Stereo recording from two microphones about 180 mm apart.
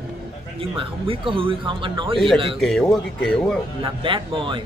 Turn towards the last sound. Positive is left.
turn(degrees=-30)  # may be behind; listen again after turning